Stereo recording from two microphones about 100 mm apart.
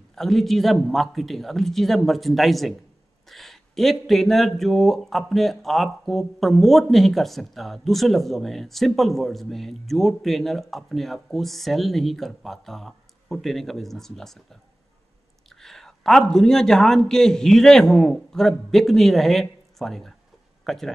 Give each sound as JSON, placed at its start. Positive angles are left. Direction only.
{"t": 0.1, "sound": "a man's voice", "side_deg": 5}